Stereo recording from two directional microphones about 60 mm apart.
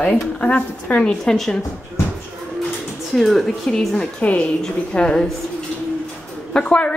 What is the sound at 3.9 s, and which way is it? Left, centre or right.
A woman's voice, centre.